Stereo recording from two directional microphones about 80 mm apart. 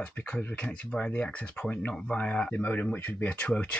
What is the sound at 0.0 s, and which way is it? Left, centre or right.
Speech, centre.